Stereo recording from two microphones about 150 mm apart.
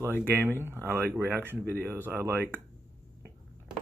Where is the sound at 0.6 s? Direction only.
15° right (ahead or behind).